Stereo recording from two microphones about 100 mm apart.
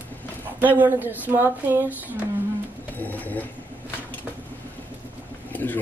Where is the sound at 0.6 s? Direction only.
20° right (ahead or behind).